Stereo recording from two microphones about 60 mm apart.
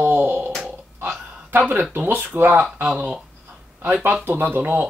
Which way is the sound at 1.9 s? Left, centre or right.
Right.